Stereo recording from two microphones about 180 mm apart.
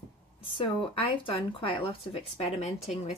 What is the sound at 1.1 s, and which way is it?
Speech, 30° left (ahead or behind).